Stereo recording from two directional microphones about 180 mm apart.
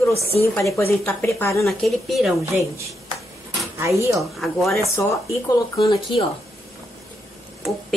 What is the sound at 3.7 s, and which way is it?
Speech, 15° right (ahead or behind).